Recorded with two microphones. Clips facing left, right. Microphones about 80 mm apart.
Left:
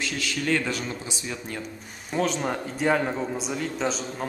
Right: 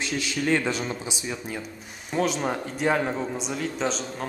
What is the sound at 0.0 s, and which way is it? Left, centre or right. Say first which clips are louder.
A man's voice: right 2 dB; right.